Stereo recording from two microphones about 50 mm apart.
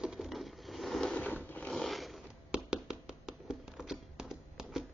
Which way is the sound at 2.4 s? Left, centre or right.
Centre.